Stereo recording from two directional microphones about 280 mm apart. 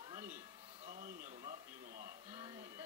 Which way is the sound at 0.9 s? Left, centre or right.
Right.